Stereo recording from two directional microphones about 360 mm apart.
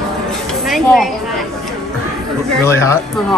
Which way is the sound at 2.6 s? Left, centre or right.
Centre.